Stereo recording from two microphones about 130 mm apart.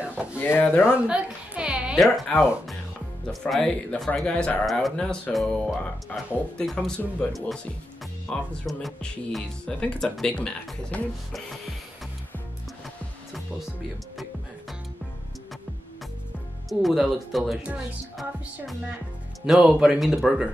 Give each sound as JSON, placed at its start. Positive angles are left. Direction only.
{"t": 0.0, "sound": "a sound", "side_deg": -10}
{"t": 0.4, "sound": "speech", "side_deg": 20}
{"t": 0.9, "sound": "a woman's voice", "side_deg": -10}
{"t": 16.6, "sound": "speech", "side_deg": 0}